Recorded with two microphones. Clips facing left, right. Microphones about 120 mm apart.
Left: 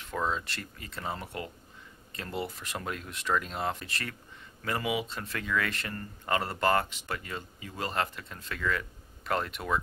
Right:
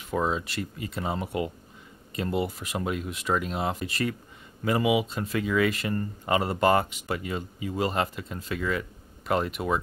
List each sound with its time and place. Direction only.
0.0 s speech: 15° right (ahead or behind)